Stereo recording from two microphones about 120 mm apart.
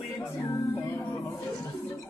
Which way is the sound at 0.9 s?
20° left (ahead or behind).